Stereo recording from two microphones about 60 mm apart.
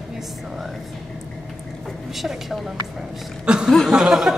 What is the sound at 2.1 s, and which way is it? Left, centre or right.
A woman's voice, centre.